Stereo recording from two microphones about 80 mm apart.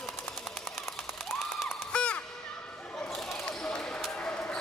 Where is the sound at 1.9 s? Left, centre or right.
Centre.